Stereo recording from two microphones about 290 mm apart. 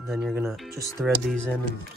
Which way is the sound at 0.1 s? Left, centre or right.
Centre.